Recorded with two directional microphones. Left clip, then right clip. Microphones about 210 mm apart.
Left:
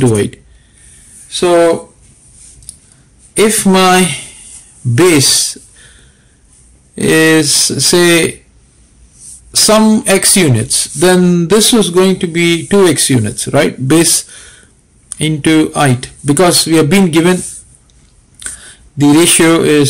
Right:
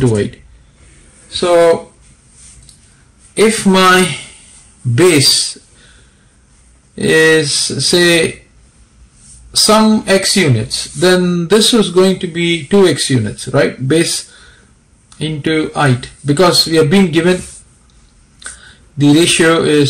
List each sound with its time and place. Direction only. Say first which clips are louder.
0.0 s speech: left 2 dB; 25° left (ahead or behind)
3.3 s speech: left 1 dB; 25° left (ahead or behind)
7.0 s speech: left 1 dB; 25° left (ahead or behind)
9.6 s speech: left 1 dB; 30° left (ahead or behind)
18.4 s speech: left 2 dB; 25° left (ahead or behind)